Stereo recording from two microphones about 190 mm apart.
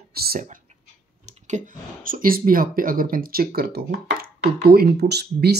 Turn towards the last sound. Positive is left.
turn(degrees=-60)  # may be behind; listen again after turning